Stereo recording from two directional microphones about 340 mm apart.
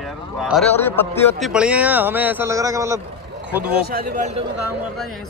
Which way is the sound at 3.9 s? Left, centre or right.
Right.